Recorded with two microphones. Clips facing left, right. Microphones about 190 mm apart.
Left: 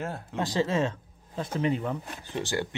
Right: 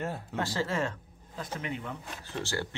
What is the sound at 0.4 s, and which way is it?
Speech, 20° left (ahead or behind).